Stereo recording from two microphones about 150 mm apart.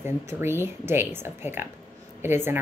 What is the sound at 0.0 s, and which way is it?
Speech, 15° right (ahead or behind).